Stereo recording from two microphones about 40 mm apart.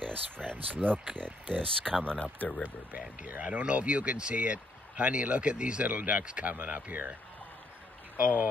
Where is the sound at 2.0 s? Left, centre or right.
Left.